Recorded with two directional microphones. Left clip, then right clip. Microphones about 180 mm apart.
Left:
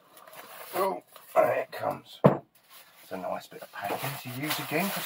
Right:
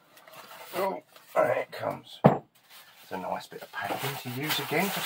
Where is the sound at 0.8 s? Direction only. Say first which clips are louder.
Left 1 dB; 10° right (ahead or behind).